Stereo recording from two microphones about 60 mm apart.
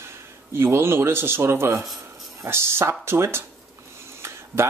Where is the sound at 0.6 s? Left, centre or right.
Right.